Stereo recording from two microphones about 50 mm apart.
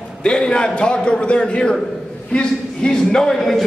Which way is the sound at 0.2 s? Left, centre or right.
Centre.